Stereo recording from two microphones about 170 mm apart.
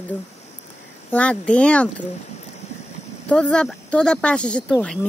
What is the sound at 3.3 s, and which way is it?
Speech, 5° left (ahead or behind).